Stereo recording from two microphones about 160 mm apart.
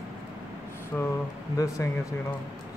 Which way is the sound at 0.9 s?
5° left (ahead or behind).